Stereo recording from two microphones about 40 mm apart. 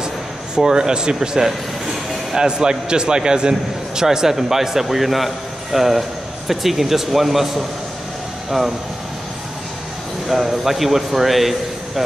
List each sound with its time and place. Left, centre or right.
0.7 s a man's voice: centre
10.2 s speech: centre